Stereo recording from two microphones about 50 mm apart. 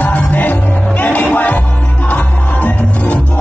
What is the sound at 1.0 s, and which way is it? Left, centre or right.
Music, left.